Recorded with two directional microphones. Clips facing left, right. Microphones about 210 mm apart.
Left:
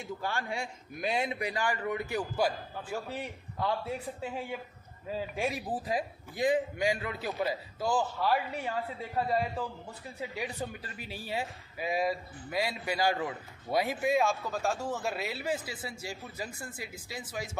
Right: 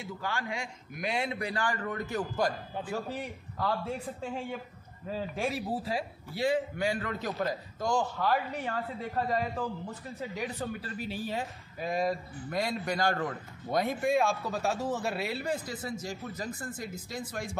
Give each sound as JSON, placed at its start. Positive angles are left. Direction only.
{"t": 1.0, "sound": "speech", "side_deg": 20}